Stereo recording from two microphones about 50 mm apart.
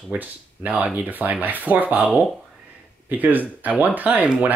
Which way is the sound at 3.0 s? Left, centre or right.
Right.